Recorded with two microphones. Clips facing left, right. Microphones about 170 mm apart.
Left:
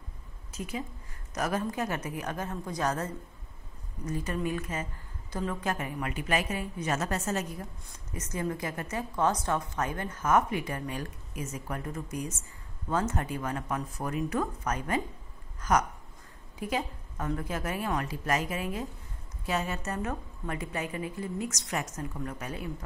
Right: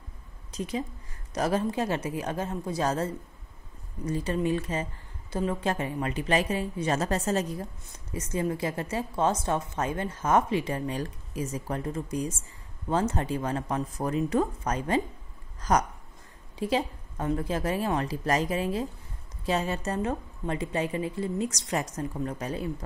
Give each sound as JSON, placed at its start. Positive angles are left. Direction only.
{"t": 0.6, "sound": "a woman's voice", "side_deg": -35}
{"t": 4.1, "sound": "a woman's voice", "side_deg": -25}
{"t": 8.1, "sound": "a woman's voice", "side_deg": -25}